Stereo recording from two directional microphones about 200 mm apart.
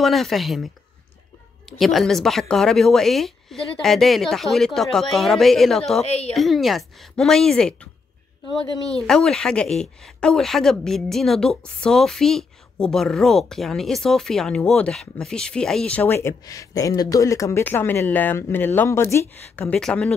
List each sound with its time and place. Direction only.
0.0 s speech: centre (ahead or behind)
1.7 s speech: centre (ahead or behind)
6.0 s a woman's voice: 30° left (ahead or behind)
6.3 s speech: centre (ahead or behind)
9.0 s speech: 5° left (ahead or behind)